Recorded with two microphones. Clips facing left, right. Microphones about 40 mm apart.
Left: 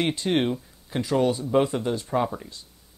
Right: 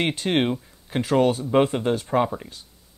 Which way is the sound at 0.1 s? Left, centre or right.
Right.